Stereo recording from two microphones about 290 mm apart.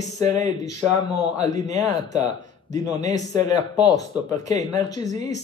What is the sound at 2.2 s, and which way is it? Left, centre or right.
Speech, centre.